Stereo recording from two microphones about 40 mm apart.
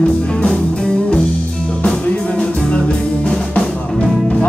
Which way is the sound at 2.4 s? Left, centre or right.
Left.